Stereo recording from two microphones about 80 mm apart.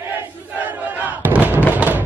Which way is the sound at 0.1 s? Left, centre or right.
Right.